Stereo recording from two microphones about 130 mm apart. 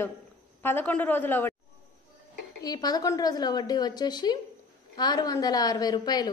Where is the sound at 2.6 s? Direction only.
30° left (ahead or behind).